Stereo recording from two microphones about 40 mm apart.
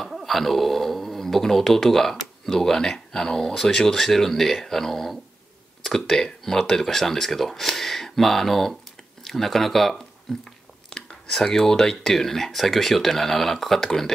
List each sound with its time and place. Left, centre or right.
0.1 s speech: centre